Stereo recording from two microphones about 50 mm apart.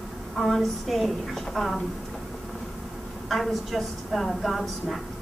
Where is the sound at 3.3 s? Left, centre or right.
Centre.